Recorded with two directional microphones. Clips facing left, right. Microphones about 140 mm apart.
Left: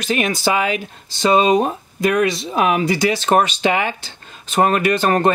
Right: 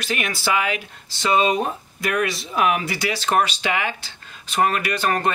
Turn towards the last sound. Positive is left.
turn(degrees=25)  # may be behind; listen again after turning